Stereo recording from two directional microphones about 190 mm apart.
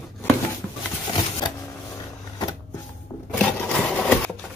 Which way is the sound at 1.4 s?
25° left (ahead or behind).